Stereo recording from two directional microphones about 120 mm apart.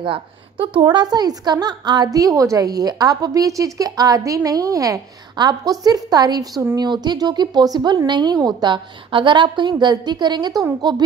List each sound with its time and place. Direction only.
0.0 s a woman's voice: 45° right (ahead or behind)